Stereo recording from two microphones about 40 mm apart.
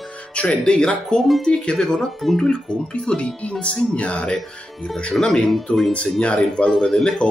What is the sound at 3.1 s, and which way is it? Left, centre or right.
Speech, left.